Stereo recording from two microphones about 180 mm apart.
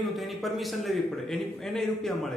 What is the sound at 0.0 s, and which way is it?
A man's voice, centre (ahead or behind).